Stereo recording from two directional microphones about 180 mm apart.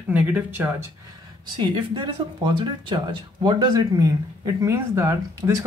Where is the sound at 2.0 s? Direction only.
25° right (ahead or behind).